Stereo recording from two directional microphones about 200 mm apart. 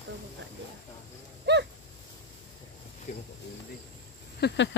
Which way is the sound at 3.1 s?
35° left (ahead or behind).